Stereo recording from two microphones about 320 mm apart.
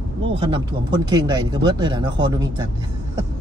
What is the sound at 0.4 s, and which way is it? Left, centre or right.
Speech, centre.